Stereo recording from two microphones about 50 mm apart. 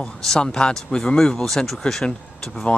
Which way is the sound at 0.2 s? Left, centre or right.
Centre.